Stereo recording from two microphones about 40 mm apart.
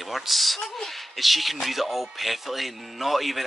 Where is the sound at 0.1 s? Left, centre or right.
Centre.